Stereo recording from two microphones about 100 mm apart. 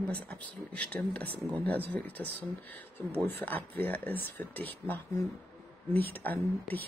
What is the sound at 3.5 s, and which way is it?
A woman's voice, 15° left (ahead or behind).